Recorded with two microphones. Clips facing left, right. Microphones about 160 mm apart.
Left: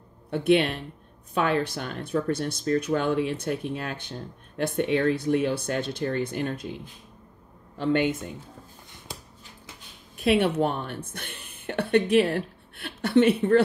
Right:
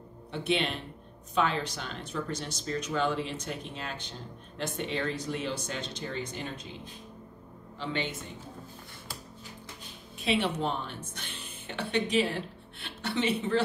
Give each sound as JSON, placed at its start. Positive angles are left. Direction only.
{"t": 0.3, "sound": "speech", "side_deg": 55}
{"t": 7.8, "sound": "a woman's voice", "side_deg": 55}
{"t": 10.1, "sound": "speech", "side_deg": 55}